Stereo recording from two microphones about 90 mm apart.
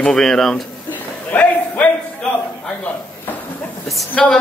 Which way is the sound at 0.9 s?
20° left (ahead or behind).